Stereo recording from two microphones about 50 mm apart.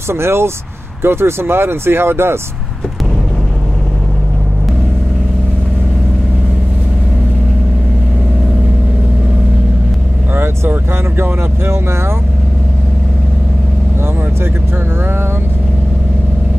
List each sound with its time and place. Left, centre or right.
0.1 s speech: right
10.3 s vehicle: right